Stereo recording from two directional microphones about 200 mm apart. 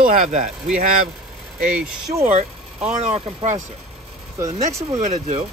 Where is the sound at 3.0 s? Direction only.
35° right (ahead or behind).